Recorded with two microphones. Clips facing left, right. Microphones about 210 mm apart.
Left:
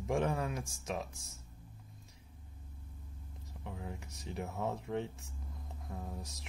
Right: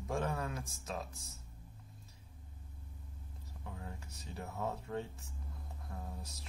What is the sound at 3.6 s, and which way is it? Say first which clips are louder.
Speech: left 4 dB; 20° left (ahead or behind).